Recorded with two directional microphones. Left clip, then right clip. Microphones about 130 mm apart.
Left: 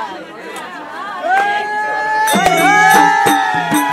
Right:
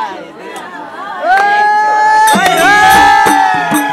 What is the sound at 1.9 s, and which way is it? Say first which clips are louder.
Music: right 7 dB; 40° right (ahead or behind).